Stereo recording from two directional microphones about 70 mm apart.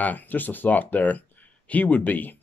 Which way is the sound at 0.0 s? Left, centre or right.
Left.